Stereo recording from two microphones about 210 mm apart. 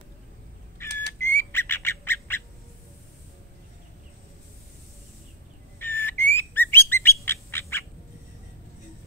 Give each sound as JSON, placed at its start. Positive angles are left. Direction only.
{"t": 0.8, "sound": "a sound", "side_deg": 10}
{"t": 1.2, "sound": "bird", "side_deg": 10}
{"t": 5.8, "sound": "bird", "side_deg": 10}